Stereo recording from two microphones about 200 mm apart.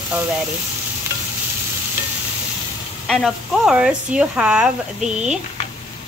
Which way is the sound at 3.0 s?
Centre (ahead or behind).